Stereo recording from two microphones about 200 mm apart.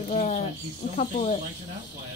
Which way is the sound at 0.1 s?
35° left (ahead or behind).